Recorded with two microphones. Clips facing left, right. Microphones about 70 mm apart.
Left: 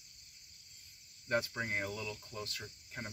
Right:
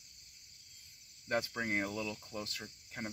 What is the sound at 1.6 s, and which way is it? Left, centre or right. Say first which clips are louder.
Speech: right 2 dB; right.